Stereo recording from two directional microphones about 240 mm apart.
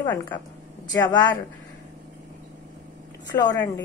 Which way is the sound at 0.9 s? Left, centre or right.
Centre.